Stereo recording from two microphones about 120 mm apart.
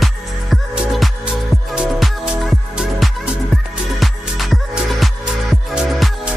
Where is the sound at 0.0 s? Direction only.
Centre (ahead or behind).